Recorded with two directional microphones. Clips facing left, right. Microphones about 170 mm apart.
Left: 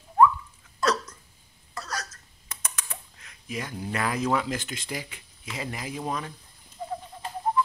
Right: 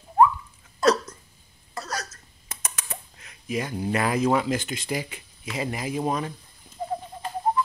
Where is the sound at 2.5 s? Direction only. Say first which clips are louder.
Right 2 dB; 20° right (ahead or behind).